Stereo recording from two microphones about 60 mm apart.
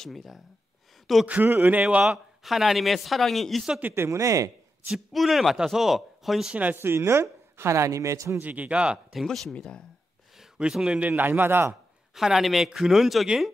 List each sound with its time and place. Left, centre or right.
0.0 s speech: centre
1.2 s a man's voice: right
1.8 s speech: right
2.0 s speech: centre
3.9 s speech: right
4.8 s speech: centre
6.5 s speech: right
6.8 s a woman's voice: right
8.4 s speech: right
9.1 s speech: centre
10.6 s speech: centre
11.0 s a man's voice: right
12.1 s speech: centre